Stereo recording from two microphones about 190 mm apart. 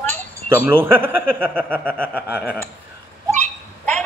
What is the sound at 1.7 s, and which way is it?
Speech, 5° left (ahead or behind).